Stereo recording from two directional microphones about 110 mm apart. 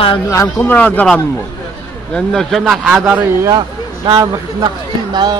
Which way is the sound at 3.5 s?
40° right (ahead or behind).